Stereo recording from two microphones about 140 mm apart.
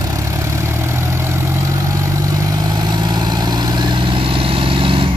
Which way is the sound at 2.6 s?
30° right (ahead or behind).